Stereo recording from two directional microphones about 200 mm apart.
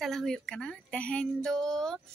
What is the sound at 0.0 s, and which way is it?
Speech, centre (ahead or behind).